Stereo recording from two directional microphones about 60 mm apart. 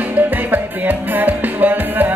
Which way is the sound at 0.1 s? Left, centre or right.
Right.